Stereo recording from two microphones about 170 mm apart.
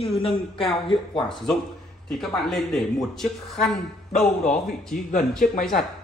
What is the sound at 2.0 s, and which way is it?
Speech, centre (ahead or behind).